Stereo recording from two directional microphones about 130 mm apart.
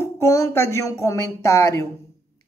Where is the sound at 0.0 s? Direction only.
25° left (ahead or behind).